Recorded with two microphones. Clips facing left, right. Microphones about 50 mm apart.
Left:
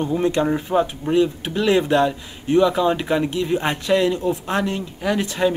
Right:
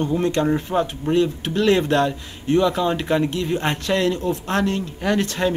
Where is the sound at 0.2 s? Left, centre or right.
Centre.